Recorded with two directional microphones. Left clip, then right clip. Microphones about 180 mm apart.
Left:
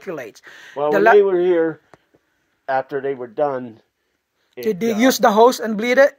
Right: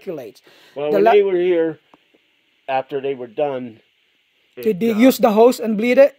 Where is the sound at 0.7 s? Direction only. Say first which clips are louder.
Left 1 dB; 20° right (ahead or behind).